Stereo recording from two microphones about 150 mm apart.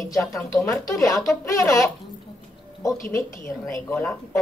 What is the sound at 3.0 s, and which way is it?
Speech, 15° left (ahead or behind).